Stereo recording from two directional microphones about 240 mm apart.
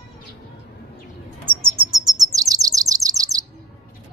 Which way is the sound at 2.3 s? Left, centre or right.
Centre.